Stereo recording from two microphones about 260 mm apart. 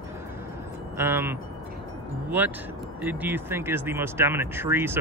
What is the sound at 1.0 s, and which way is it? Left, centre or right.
Speech, centre.